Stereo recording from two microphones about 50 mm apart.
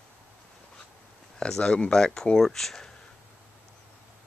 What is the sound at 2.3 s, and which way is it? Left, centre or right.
Speech, centre.